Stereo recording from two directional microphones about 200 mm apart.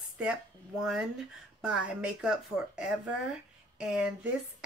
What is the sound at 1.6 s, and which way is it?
Speech, 5° right (ahead or behind).